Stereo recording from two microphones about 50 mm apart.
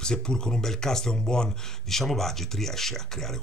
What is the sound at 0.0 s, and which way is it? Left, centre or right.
Speech, centre.